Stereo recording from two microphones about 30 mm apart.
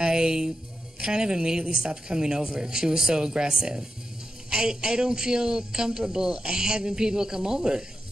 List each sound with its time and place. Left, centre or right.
0.0 s music: right
1.0 s a man's voice: right